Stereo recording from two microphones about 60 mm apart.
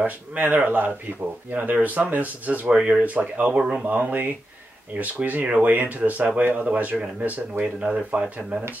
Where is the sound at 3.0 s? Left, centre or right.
Right.